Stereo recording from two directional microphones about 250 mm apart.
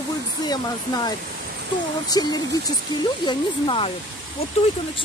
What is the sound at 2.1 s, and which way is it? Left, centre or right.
Speech, centre.